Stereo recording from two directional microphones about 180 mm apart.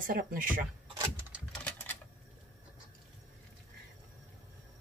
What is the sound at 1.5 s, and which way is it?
Typewriter, 5° left (ahead or behind).